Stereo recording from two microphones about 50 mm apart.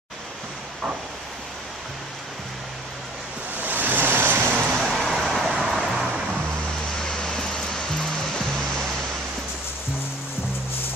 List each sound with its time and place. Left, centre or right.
3.6 s vehicle: right
4.7 s vehicle: centre
7.1 s music: centre